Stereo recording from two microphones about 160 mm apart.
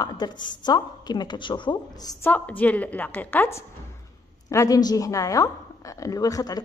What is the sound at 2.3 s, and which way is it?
A woman's voice, 10° left (ahead or behind).